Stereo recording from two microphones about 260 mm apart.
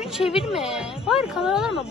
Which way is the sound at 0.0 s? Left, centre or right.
Centre.